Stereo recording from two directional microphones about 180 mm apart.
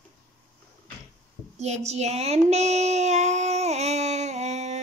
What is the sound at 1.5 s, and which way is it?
Female singing, 35° right (ahead or behind).